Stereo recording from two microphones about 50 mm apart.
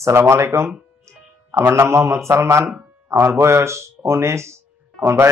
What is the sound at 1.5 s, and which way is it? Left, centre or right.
Speech, right.